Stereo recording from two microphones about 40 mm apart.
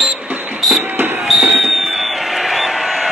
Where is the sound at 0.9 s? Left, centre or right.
Right.